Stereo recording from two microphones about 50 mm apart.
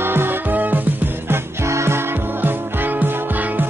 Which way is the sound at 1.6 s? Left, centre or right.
Right.